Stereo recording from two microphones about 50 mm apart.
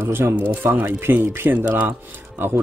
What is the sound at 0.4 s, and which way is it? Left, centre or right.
Speech, right.